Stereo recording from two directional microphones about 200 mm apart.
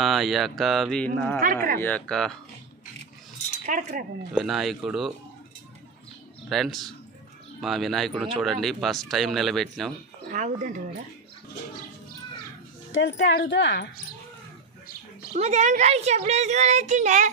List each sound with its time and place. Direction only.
0.0 s speech: centre (ahead or behind)
3.6 s a child's voice: 40° right (ahead or behind)
4.3 s speech: centre (ahead or behind)
6.5 s speech: centre (ahead or behind)
10.3 s a child's voice: 40° right (ahead or behind)
12.9 s speech: 70° left (ahead or behind)
15.3 s a child's voice: 35° right (ahead or behind)